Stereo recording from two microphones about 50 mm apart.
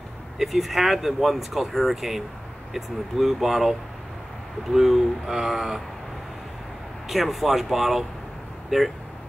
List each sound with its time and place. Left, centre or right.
0.4 s speech: centre
7.1 s speech: centre